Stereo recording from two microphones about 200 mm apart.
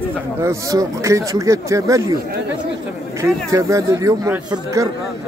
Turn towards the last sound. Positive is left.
turn(degrees=-15)  # may be behind; listen again after turning